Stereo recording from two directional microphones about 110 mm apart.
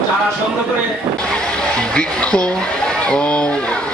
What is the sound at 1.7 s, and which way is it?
Speech, 10° left (ahead or behind).